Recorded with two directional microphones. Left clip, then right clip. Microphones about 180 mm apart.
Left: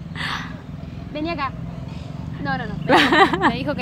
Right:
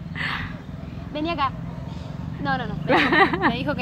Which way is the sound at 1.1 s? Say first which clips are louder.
Right 1 dB; centre (ahead or behind).